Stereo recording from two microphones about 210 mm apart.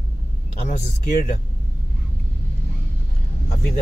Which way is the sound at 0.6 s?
40° left (ahead or behind).